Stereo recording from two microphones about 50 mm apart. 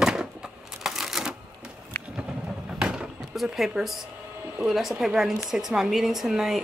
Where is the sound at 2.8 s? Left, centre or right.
Right.